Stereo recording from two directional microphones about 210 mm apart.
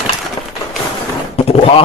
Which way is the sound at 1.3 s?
30° left (ahead or behind).